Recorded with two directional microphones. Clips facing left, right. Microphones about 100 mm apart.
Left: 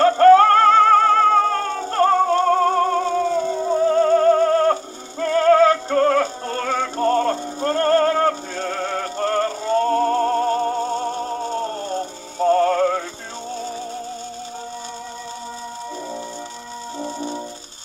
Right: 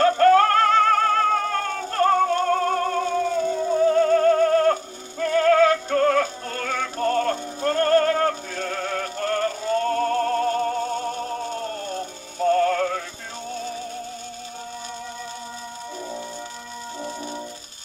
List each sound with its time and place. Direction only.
0.0 s music: 30° left (ahead or behind)
5.2 s synthetic singing: 35° left (ahead or behind)
17.0 s brass instrument: 30° left (ahead or behind)